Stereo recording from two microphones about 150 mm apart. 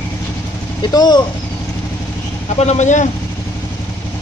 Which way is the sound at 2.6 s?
50° left (ahead or behind).